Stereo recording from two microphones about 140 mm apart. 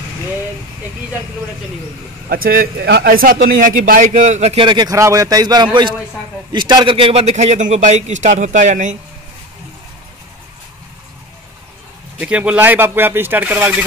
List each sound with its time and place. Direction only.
2.2 s a man's voice: 90° right; by 4.6 s 50° right (ahead or behind)
4.6 s a man's voice: 30° right (ahead or behind); by 8.9 s 60° right (ahead or behind)
12.2 s speech: 10° right (ahead or behind)